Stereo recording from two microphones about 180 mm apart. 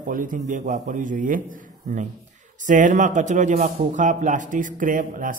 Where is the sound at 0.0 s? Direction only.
45° right (ahead or behind).